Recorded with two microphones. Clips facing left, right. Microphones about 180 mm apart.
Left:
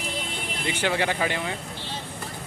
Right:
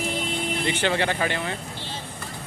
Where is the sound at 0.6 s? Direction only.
10° left (ahead or behind).